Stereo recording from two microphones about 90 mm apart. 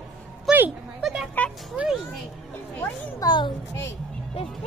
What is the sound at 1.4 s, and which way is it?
Speech, 20° left (ahead or behind).